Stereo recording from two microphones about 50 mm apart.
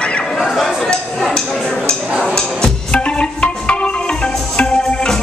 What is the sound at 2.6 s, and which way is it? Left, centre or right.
Music, left.